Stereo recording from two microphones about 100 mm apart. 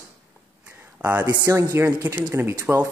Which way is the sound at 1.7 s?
20° right (ahead or behind).